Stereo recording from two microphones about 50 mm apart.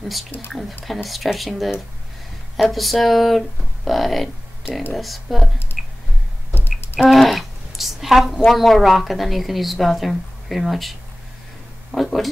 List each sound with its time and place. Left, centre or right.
0.0 s speech: centre
5.7 s squish: left
7.0 s a woman's voice: centre